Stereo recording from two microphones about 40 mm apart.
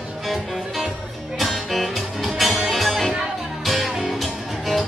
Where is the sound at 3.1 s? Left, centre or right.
Centre.